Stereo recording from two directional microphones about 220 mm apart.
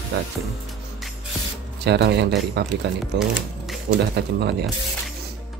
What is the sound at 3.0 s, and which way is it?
Speech, centre (ahead or behind).